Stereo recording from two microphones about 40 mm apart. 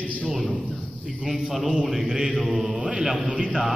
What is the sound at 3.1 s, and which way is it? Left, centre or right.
Speech, right.